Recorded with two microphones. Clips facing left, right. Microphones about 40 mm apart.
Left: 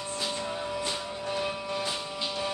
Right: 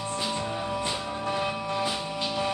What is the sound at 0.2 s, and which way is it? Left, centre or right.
Music, centre.